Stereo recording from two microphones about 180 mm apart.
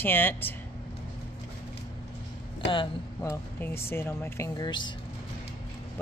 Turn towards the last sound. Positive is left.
turn(degrees=25)  # may be behind; listen again after turning